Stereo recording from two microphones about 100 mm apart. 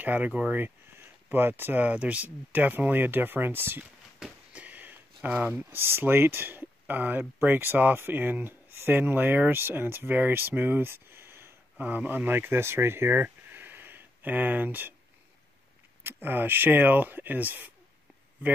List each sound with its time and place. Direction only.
0.0 s speech: 15° right (ahead or behind)
4.2 s a sound: 15° right (ahead or behind)
5.3 s speech: 15° right (ahead or behind)
16.0 s speech: 20° right (ahead or behind)